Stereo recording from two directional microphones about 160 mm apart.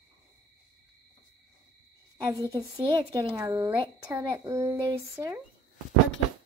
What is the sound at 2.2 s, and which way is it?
A woman's voice, 20° right (ahead or behind).